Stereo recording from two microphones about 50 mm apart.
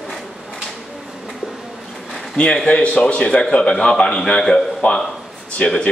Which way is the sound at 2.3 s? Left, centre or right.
Centre.